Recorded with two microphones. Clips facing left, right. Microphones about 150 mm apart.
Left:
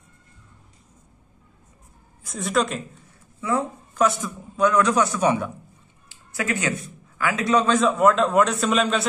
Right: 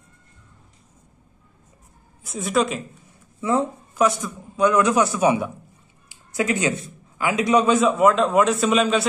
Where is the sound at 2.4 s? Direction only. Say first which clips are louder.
Right 2 dB; 5° right (ahead or behind).